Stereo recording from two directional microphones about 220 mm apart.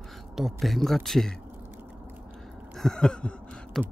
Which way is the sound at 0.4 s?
Centre (ahead or behind).